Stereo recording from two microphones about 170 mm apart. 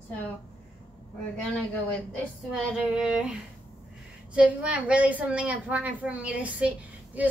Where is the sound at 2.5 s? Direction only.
5° right (ahead or behind).